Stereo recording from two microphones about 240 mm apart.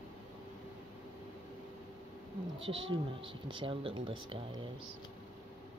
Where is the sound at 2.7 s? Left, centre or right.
Right.